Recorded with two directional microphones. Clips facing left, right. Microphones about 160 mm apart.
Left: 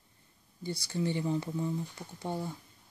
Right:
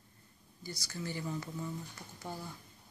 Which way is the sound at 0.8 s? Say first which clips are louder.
Left 8 dB; 25° left (ahead or behind).